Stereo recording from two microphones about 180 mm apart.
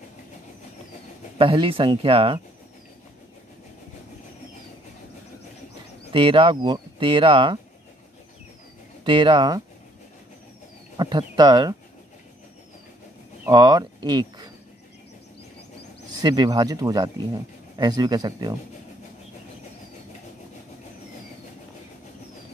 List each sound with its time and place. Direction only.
1.4 s speech: 30° right (ahead or behind)
6.1 s speech: 30° right (ahead or behind)
9.0 s speech: 25° right (ahead or behind)
11.0 s speech: 25° right (ahead or behind)
13.5 s speech: 20° right (ahead or behind)
16.2 s speech: 20° right (ahead or behind)